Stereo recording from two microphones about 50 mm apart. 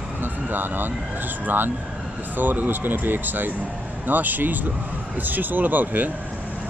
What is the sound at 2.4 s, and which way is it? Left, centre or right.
Speech, right.